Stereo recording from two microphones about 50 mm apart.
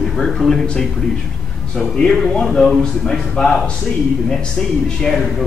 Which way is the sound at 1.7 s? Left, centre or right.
Centre.